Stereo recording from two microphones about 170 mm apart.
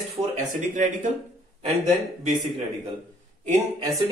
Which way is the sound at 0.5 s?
50° right (ahead or behind).